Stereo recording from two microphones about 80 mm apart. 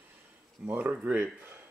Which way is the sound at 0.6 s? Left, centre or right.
Centre.